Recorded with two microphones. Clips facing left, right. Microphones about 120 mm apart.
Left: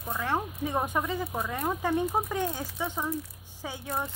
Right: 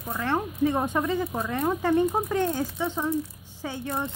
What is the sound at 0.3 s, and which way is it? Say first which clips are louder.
Speech: right 6 dB; 10° left (ahead or behind).